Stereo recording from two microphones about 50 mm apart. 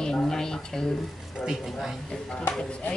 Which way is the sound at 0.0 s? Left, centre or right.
Centre.